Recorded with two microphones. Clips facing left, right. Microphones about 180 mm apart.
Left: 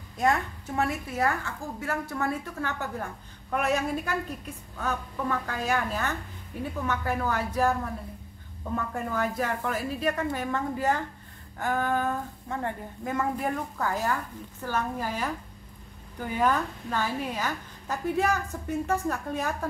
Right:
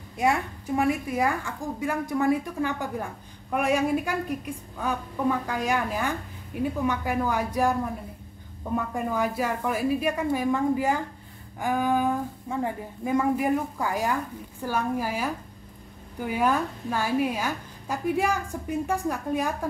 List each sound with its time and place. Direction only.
0.2 s a woman's voice: 10° right (ahead or behind)